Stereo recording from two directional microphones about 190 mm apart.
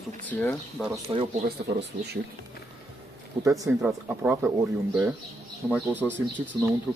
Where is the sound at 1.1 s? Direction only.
25° right (ahead or behind).